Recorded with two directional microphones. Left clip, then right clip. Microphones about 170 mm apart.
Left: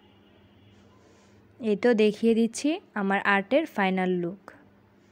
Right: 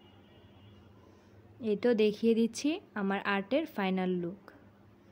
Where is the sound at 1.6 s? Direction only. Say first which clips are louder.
Left 6 dB; 35° left (ahead or behind).